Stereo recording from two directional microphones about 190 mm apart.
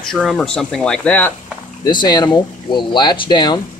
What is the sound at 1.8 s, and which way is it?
Speech, 20° left (ahead or behind).